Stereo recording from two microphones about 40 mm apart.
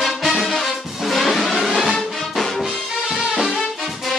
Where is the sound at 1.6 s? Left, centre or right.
Centre.